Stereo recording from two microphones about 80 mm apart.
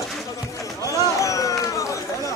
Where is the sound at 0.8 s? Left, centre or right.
Left.